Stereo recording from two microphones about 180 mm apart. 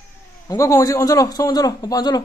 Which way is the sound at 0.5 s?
15° left (ahead or behind).